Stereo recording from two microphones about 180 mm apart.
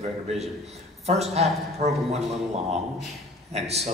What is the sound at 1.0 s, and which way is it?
Speech, 35° right (ahead or behind).